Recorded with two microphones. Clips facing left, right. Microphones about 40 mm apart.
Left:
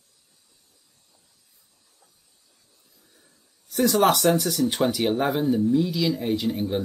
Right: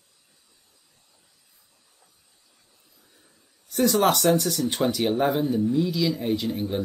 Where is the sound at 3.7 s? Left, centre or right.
Centre.